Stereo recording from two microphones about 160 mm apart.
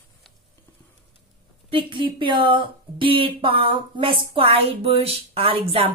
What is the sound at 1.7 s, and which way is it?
A woman's voice, 30° right (ahead or behind).